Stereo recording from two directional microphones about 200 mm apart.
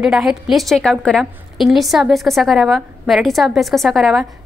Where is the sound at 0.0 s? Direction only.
5° right (ahead or behind).